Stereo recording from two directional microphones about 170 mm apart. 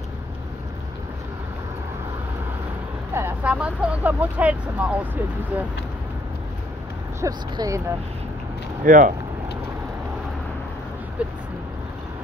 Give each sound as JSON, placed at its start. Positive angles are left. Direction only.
{"t": 3.2, "sound": "speech", "side_deg": -10}
{"t": 7.2, "sound": "speech", "side_deg": -20}
{"t": 8.8, "sound": "speech", "side_deg": -50}
{"t": 11.2, "sound": "speech", "side_deg": -5}